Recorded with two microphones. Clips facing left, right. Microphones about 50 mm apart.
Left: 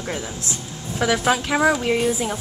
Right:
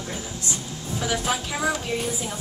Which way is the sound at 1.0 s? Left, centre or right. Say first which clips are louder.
Left 7 dB; left.